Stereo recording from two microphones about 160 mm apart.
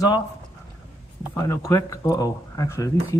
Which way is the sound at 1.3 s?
20° left (ahead or behind).